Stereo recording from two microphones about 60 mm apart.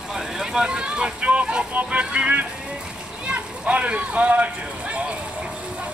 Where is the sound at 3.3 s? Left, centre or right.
Right.